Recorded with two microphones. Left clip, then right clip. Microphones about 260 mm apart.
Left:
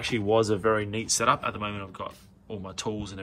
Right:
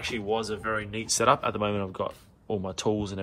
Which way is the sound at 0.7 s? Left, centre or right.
Centre.